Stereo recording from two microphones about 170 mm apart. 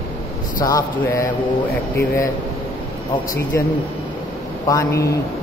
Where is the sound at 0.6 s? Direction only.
20° left (ahead or behind).